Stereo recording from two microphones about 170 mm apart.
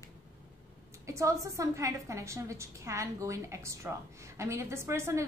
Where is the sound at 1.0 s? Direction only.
20° right (ahead or behind).